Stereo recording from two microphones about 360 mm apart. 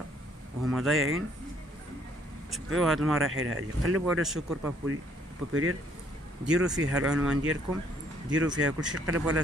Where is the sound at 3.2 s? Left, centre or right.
Right.